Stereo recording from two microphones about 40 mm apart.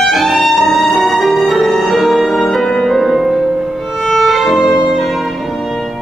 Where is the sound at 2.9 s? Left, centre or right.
Centre.